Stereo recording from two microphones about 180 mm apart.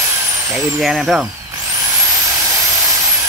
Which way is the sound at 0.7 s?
Centre (ahead or behind).